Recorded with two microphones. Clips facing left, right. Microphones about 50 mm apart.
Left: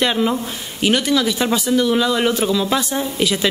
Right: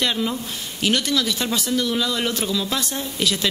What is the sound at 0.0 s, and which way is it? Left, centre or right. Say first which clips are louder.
Speech: left 5 dB; left.